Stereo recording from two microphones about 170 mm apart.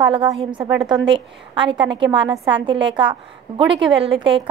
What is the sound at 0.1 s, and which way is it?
A woman's voice, 30° right (ahead or behind).